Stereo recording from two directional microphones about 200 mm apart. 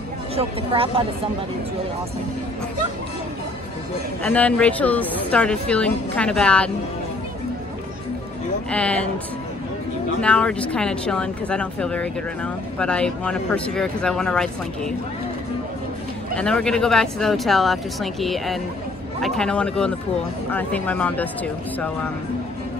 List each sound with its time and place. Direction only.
0.4 s speech: 30° right (ahead or behind)
4.2 s speech: 5° left (ahead or behind)
8.6 s speech: 5° left (ahead or behind)
10.2 s speech: 5° left (ahead or behind)
16.3 s speech: 5° left (ahead or behind)